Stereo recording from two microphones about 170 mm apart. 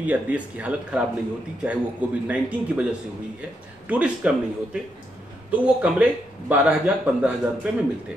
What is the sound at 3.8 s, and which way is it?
Speech, 5° right (ahead or behind).